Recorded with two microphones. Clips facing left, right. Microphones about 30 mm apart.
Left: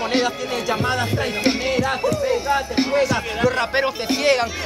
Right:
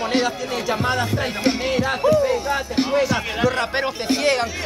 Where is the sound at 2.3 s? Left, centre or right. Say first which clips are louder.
Left 2 dB; centre.